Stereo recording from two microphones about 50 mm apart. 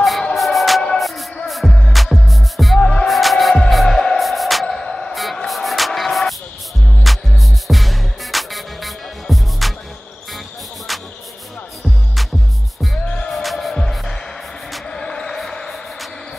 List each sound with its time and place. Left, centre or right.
0.4 s music: centre
2.8 s music: left
3.1 s music: centre
4.7 s music: centre
5.1 s a sound: centre
5.5 s music: centre
10.9 s music: centre
13.0 s music: left
13.3 s music: centre
14.9 s basketball bounce: centre